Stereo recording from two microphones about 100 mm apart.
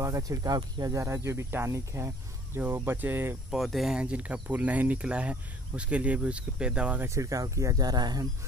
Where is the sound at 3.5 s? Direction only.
Centre (ahead or behind).